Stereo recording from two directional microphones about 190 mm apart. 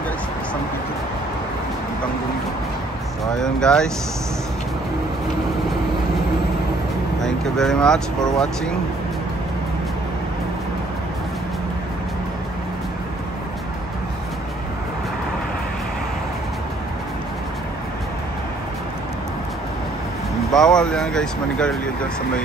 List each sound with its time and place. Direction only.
3.3 s speech: 5° left (ahead or behind)
7.2 s speech: centre (ahead or behind)
20.5 s speech: 5° left (ahead or behind)